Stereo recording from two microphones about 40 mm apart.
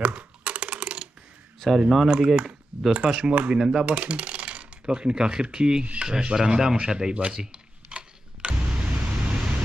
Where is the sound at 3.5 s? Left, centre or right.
Centre.